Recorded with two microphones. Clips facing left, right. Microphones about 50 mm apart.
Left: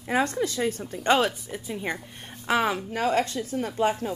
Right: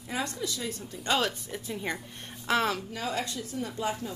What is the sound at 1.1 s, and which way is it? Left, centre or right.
A woman's voice, centre.